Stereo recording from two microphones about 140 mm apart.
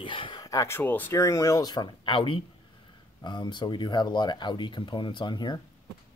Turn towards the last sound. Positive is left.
turn(degrees=30)  # may be behind; listen again after turning